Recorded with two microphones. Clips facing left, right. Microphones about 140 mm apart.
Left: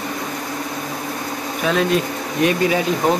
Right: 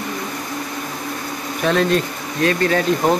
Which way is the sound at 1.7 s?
5° left (ahead or behind).